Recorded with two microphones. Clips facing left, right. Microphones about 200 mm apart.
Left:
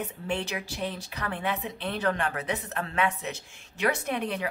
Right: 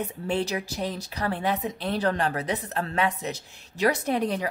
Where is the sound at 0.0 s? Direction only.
35° right (ahead or behind).